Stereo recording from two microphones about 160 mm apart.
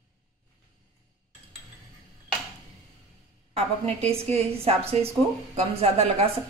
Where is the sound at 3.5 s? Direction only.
40° right (ahead or behind).